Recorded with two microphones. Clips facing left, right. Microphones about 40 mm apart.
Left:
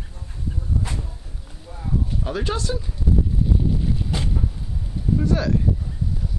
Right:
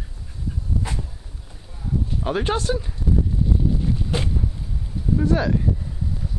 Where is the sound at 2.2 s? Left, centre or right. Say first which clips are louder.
Right 7 dB; right.